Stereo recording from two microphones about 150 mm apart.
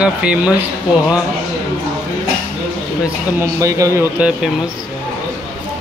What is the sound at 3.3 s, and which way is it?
Speech, 20° right (ahead or behind).